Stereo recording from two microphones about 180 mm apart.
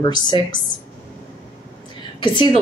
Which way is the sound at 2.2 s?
25° left (ahead or behind).